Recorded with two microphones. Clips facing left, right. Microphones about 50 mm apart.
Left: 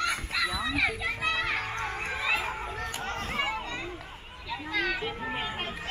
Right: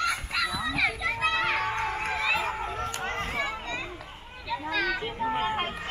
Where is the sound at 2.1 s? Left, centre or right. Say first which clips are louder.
Right 1 dB; centre.